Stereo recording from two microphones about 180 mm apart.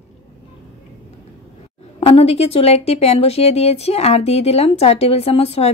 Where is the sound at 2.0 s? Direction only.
35° left (ahead or behind).